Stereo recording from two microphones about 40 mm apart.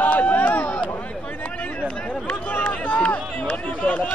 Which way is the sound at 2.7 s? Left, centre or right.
Left.